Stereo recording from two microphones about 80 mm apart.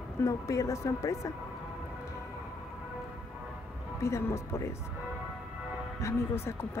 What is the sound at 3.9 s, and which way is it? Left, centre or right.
Speech, left.